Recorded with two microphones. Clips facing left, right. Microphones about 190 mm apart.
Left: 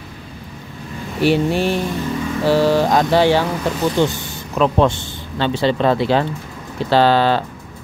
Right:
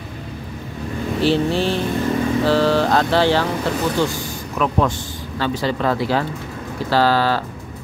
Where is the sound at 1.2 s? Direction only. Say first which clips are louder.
Left 2 dB; 15° left (ahead or behind).